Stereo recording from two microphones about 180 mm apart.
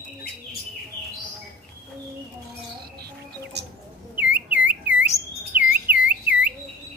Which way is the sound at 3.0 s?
65° right (ahead or behind).